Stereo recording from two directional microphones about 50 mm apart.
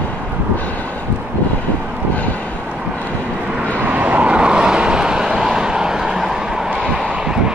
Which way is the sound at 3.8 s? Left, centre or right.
Right.